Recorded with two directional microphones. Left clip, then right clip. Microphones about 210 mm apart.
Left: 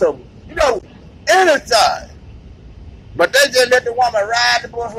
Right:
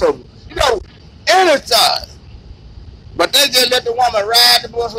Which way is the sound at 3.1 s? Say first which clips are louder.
Even; 15° right (ahead or behind).